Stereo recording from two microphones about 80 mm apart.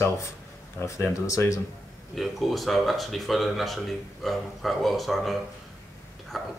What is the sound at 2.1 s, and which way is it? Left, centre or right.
Speech, centre.